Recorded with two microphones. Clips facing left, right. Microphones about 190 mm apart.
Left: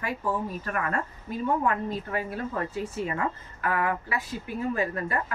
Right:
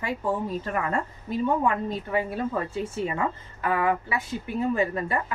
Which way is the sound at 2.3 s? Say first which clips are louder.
Right 3 dB; 25° right (ahead or behind).